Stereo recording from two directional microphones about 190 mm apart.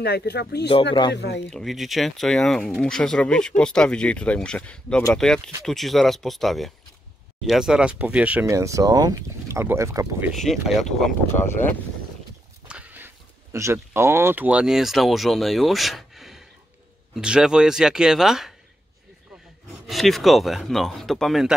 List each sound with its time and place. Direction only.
0.0 s speech: 60° left (ahead or behind)
1.5 s speech: centre (ahead or behind)
10.3 s speech: centre (ahead or behind)
12.6 s speech: 10° right (ahead or behind)
19.9 s speech: centre (ahead or behind)